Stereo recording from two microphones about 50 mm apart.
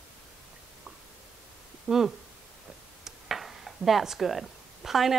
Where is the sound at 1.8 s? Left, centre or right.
Centre.